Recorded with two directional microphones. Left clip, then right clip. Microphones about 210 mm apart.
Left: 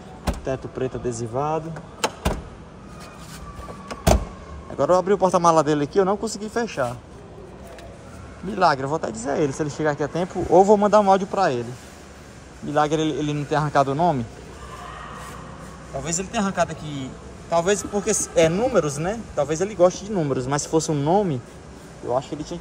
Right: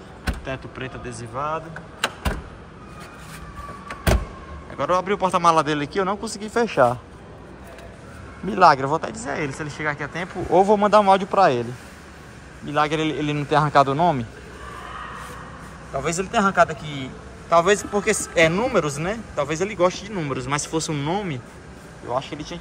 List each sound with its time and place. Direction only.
0.5 s speech: 30° left (ahead or behind)
4.7 s a man's voice: 25° left (ahead or behind)
6.4 s speech: 10° left (ahead or behind)
8.5 s speech: 5° left (ahead or behind)
12.7 s speech: 15° left (ahead or behind)
16.0 s a man's voice: 5° left (ahead or behind); by 22.6 s 20° left (ahead or behind)